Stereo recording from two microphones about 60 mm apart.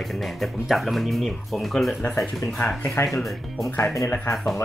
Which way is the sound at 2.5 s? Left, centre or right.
Left.